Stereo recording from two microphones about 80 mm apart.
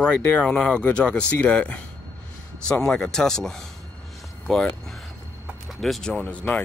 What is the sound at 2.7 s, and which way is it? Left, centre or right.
Speech, centre.